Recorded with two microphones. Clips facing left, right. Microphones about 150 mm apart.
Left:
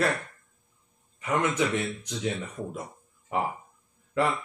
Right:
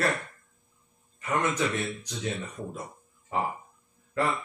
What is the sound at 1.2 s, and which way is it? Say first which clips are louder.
Speech: left 2 dB; 15° left (ahead or behind).